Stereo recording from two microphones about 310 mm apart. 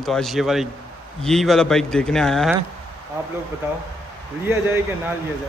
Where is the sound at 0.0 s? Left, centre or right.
Centre.